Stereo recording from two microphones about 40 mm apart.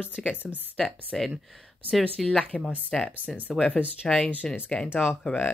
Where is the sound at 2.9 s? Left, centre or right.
Centre.